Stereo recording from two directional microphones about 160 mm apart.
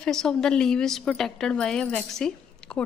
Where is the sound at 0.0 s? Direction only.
5° left (ahead or behind).